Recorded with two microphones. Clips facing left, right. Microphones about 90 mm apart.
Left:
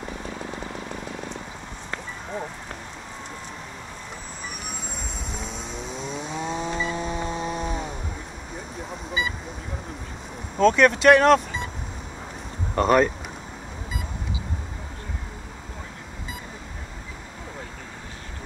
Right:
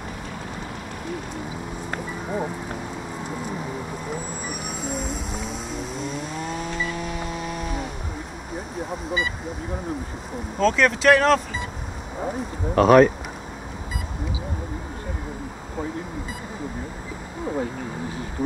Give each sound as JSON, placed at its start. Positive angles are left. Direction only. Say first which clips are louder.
{"t": 2.2, "sound": "a sound", "louder": "right 6 dB", "side_deg": -5}
{"t": 4.8, "sound": "vehicle", "louder": "right 7 dB", "side_deg": -5}
{"t": 6.5, "sound": "chainsaw", "louder": "left 2 dB", "side_deg": 30}
{"t": 8.9, "sound": "speech", "louder": "right 2 dB", "side_deg": 0}
{"t": 10.6, "sound": "speech", "louder": "left 2 dB", "side_deg": 0}
{"t": 12.7, "sound": "speech", "louder": "right 5 dB", "side_deg": -5}